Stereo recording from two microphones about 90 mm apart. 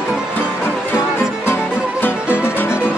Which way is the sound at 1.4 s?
25° left (ahead or behind).